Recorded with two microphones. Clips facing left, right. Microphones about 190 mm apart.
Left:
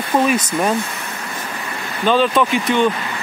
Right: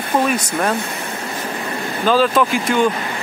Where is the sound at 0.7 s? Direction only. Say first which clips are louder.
Left 1 dB; 60° right (ahead or behind).